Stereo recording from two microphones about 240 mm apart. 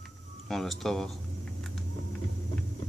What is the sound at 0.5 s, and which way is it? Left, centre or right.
Speech, centre.